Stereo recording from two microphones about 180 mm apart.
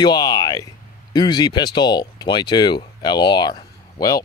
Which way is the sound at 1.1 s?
20° left (ahead or behind).